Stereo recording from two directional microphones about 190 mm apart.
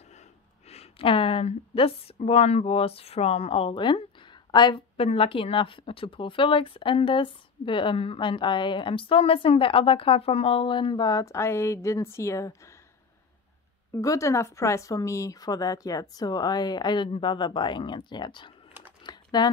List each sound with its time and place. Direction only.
0.7 s speech: 30° left (ahead or behind); by 12.5 s 15° left (ahead or behind)
13.9 s speech: 15° left (ahead or behind)
19.0 s typing: 20° left (ahead or behind)